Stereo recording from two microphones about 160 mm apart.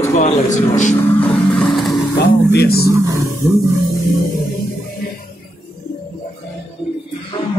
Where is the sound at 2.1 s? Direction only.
85° left.